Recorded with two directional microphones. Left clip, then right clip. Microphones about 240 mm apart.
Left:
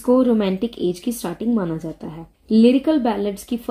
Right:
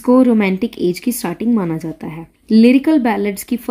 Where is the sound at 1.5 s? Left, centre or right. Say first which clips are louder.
Right 4 dB; right.